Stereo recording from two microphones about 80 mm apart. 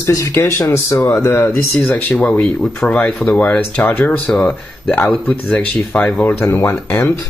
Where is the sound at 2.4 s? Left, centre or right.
Centre.